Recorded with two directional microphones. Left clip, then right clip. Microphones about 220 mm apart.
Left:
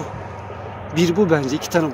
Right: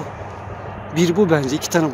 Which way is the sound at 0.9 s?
10° right (ahead or behind).